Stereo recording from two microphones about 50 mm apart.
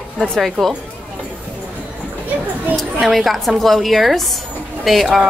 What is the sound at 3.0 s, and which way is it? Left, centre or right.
A woman's voice, centre.